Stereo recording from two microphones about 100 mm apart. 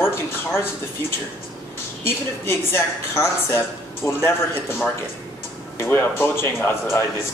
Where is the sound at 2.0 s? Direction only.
25° left (ahead or behind).